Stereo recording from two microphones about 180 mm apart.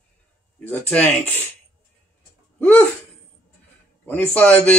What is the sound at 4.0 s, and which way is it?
Speech, 10° left (ahead or behind).